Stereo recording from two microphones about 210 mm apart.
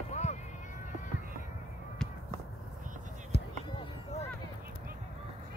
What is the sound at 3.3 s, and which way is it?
Basketball bounce, 50° left (ahead or behind).